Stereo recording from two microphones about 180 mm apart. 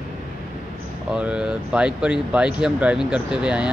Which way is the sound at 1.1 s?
5° right (ahead or behind).